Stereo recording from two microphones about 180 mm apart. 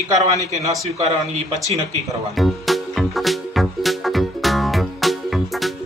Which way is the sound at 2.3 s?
Centre (ahead or behind).